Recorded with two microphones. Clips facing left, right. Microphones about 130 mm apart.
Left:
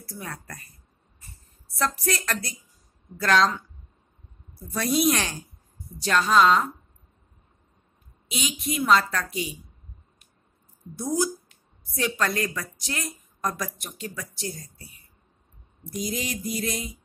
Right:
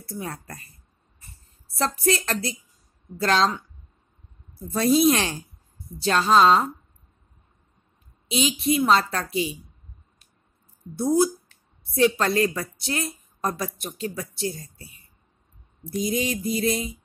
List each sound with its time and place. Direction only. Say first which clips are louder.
0.0 s speech: right 4 dB; 25° right (ahead or behind)
1.7 s a woman's voice: right 4 dB; 25° right (ahead or behind)
4.6 s a woman's voice: right 5 dB; 25° right (ahead or behind)
8.3 s a woman's voice: right 7 dB; 30° right (ahead or behind)
11.0 s a woman's voice: right 6 dB; 30° right (ahead or behind)
15.9 s a woman's voice: right 5 dB; 25° right (ahead or behind)